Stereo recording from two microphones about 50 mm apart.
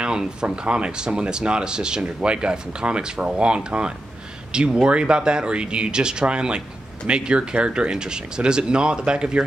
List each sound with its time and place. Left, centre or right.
0.0 s speech: centre